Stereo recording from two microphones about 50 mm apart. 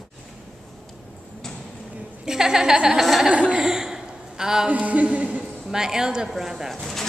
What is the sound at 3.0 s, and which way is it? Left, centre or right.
Speech, centre.